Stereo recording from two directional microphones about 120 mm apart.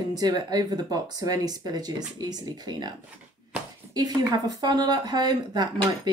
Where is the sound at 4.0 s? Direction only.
35° right (ahead or behind).